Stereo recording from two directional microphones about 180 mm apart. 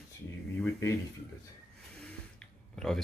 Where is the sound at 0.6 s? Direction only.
15° left (ahead or behind).